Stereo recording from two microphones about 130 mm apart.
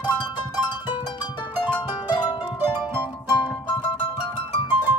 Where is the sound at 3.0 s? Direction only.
35° left (ahead or behind).